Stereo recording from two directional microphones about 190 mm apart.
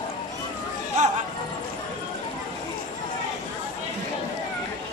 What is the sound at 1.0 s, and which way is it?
Music, 40° right (ahead or behind).